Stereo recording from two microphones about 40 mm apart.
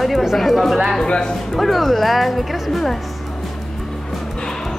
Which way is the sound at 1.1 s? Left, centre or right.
Centre.